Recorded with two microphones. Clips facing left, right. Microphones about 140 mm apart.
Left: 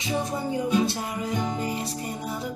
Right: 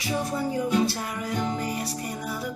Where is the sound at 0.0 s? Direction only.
20° left (ahead or behind).